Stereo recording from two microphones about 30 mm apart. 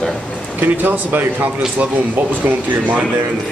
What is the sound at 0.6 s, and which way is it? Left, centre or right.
Speech, right.